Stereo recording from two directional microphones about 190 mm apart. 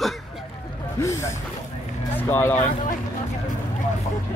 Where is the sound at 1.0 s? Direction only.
15° left (ahead or behind).